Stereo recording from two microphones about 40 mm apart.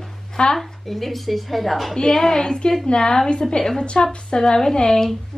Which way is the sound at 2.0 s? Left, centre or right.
Centre.